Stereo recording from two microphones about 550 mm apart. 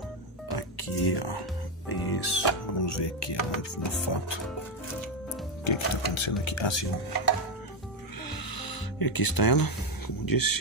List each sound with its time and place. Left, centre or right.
0.6 s music: left
1.9 s speech: left
5.6 s music: left
6.4 s speech: left
8.3 s music: left